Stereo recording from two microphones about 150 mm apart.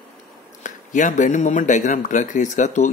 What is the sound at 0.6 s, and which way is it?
Speech, 55° left (ahead or behind).